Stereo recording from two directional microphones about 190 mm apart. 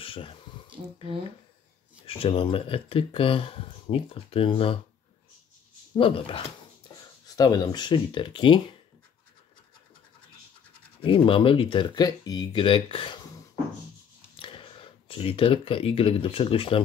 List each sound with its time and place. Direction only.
0.0 s a sound: 30° left (ahead or behind)
2.0 s speech: 30° left (ahead or behind)
5.9 s speech: 25° left (ahead or behind)
11.0 s speech: 30° left (ahead or behind)
14.4 s speech: 25° left (ahead or behind)